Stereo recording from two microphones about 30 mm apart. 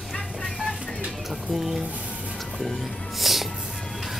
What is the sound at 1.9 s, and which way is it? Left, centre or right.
Music, right.